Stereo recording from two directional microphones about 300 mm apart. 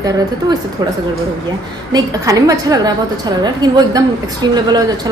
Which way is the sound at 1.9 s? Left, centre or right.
Centre.